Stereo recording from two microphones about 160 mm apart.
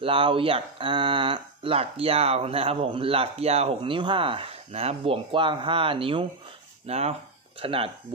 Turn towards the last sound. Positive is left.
turn(degrees=-35)  # may be behind; listen again after turning